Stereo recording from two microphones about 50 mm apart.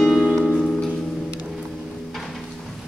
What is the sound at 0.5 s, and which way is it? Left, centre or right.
Music, left.